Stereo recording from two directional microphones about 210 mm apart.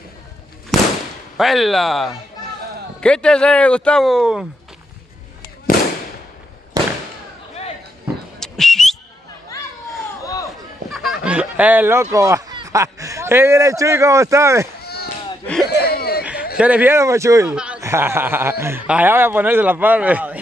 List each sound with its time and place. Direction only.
0.7 s fireworks: centre (ahead or behind)
1.3 s speech: centre (ahead or behind)
6.8 s fireworks: 15° right (ahead or behind)
8.4 s whistle: centre (ahead or behind)
10.9 s speech: centre (ahead or behind)
14.8 s a sound: 50° left (ahead or behind)
16.5 s a man's voice: 5° right (ahead or behind)